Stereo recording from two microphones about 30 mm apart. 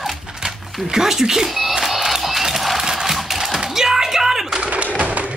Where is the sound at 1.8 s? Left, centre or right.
Centre.